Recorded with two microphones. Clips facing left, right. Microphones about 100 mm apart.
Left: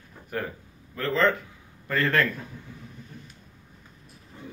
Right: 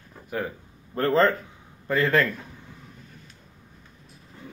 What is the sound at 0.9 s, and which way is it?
Speech, 40° right (ahead or behind).